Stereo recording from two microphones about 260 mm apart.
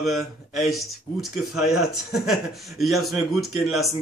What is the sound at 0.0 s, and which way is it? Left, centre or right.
Speech, centre.